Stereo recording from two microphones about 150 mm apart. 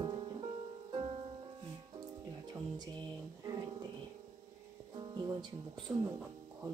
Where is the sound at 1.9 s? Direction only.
25° right (ahead or behind).